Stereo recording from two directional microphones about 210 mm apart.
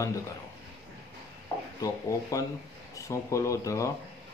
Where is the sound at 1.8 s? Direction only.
15° left (ahead or behind).